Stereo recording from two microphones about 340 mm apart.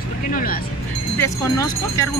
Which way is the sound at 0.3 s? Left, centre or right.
Left.